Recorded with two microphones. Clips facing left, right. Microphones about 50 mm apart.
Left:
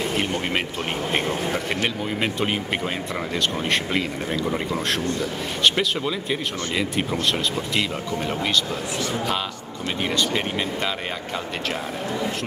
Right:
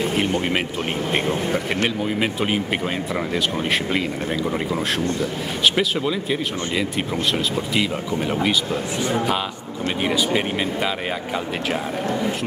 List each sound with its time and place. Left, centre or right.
0.0 s a sound: centre
2.0 s speech: centre
9.0 s a man's voice: right
10.0 s speech: centre